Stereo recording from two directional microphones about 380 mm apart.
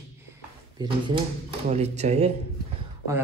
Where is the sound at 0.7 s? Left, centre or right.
Centre.